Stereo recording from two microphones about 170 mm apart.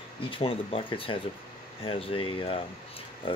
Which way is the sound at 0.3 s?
30° left (ahead or behind).